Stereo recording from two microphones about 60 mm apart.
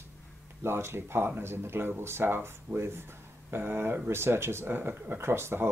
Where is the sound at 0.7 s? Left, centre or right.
Right.